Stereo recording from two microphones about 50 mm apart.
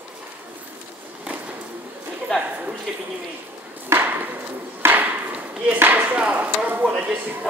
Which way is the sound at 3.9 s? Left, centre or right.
Right.